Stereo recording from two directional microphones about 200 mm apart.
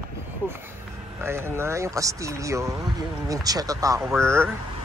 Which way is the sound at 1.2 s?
10° right (ahead or behind).